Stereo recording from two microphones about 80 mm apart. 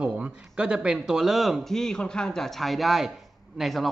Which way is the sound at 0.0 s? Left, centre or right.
Centre.